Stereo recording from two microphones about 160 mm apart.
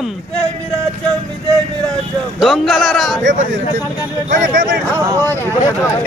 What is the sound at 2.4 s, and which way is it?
Speech, centre (ahead or behind).